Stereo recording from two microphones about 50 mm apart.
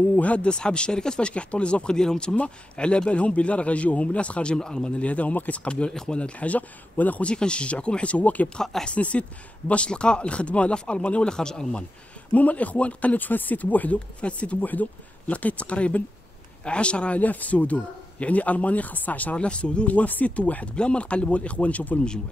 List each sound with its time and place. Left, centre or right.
0.1 s a man's voice: left
7.2 s a man's voice: left
8.5 s speech: centre
8.8 s a man's voice: left
12.3 s a man's voice: left
19.3 s a man's voice: left